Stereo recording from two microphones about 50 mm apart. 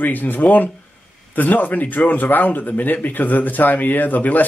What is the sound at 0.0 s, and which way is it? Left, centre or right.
Speech, left.